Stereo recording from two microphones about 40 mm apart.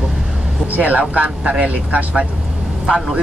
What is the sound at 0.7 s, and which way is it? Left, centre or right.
Speech, right.